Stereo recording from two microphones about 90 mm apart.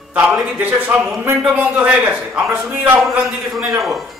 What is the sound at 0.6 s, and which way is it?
A man's voice, 20° right (ahead or behind).